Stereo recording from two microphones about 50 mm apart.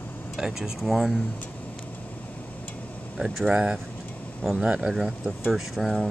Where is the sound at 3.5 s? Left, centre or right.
Centre.